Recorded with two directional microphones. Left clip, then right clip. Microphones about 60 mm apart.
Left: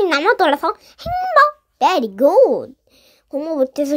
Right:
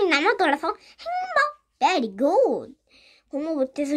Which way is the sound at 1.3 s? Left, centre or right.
Left.